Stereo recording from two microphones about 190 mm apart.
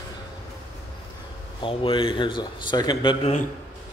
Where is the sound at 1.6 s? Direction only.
25° left (ahead or behind).